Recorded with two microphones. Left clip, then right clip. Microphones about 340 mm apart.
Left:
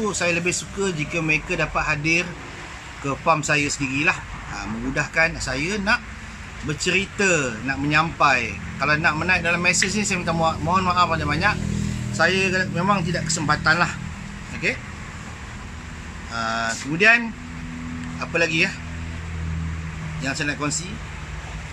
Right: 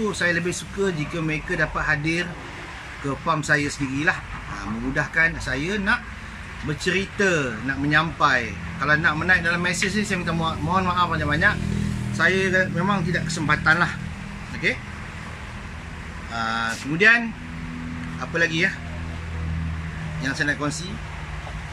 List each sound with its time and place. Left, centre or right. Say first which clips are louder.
0.0 s a man's voice: left 1 dB; centre
16.3 s a man's voice: left 1 dB; centre
18.2 s a man's voice: left 1 dB; centre
20.2 s a man's voice: right 1 dB; centre